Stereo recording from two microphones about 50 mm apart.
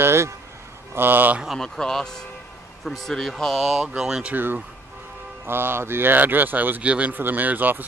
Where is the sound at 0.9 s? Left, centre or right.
Right.